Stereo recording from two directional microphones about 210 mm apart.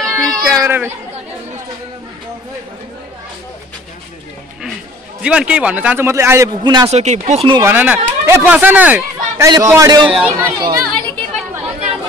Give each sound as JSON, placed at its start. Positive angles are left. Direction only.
{"t": 0.0, "sound": "a sound", "side_deg": 0}
{"t": 0.6, "sound": "speech", "side_deg": -10}
{"t": 5.2, "sound": "speech", "side_deg": -5}
{"t": 6.9, "sound": "speech", "side_deg": -30}
{"t": 7.6, "sound": "speech", "side_deg": -10}
{"t": 10.8, "sound": "a sound", "side_deg": 0}